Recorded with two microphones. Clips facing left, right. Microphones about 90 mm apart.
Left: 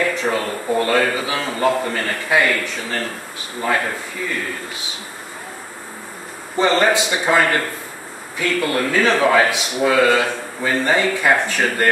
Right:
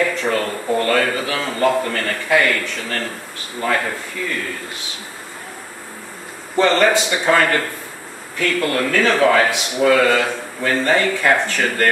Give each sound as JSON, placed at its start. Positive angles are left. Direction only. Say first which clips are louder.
{"t": 0.1, "sound": "speech", "louder": "even", "side_deg": 10}
{"t": 6.5, "sound": "speech", "louder": "right 1 dB", "side_deg": 15}